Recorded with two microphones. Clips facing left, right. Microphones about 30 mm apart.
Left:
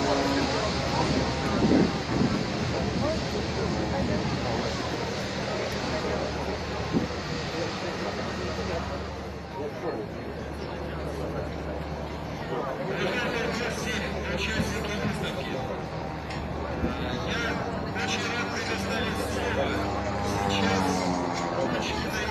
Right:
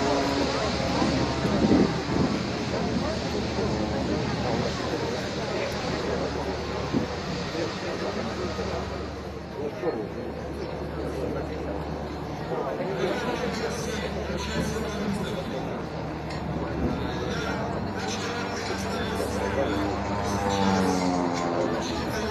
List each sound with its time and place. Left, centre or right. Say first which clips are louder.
0.0 s vehicle: right 1 dB; centre
13.1 s a sound: even; left
18.7 s a sound: even; left
20.3 s music: right 1 dB; left
20.9 s music: right 2 dB; centre
21.3 s vehicle: right 2 dB; centre